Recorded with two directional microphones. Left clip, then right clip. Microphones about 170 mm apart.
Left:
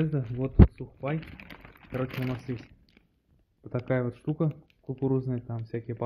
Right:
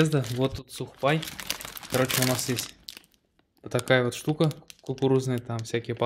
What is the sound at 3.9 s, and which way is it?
Speech, 15° right (ahead or behind).